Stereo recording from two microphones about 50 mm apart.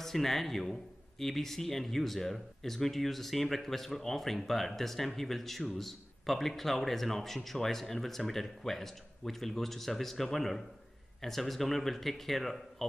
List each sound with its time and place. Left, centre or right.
0.0 s speech: centre